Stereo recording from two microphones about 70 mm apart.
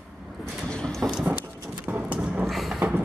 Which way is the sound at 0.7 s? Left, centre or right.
Centre.